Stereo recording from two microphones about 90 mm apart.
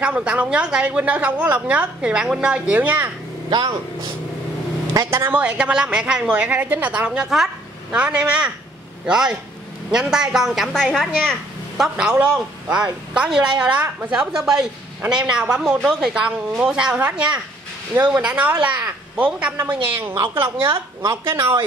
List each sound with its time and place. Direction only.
0.0 s a woman's voice: 15° right (ahead or behind)
3.4 s speech: 55° right (ahead or behind)
5.1 s a woman's voice: 20° right (ahead or behind)
7.2 s a woman's voice: 5° right (ahead or behind); by 20.6 s 30° right (ahead or behind)
20.6 s speech: 45° right (ahead or behind)
21.1 s speech: 30° right (ahead or behind)